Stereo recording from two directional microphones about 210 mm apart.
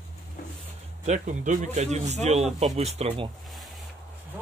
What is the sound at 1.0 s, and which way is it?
Speech, 35° right (ahead or behind).